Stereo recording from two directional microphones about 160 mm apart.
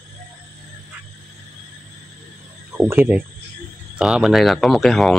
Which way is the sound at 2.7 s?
10° right (ahead or behind).